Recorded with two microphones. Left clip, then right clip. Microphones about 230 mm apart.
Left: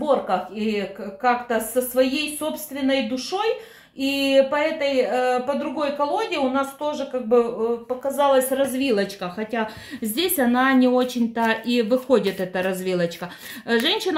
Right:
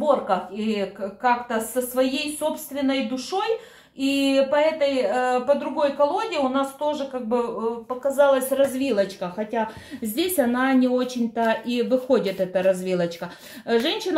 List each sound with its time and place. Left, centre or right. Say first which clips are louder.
0.3 s speech: left 1 dB; left